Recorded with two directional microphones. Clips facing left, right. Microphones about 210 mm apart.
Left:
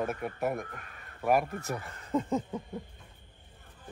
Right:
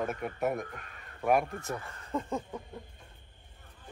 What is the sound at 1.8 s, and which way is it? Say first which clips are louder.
Speech: left 4 dB; 20° left (ahead or behind).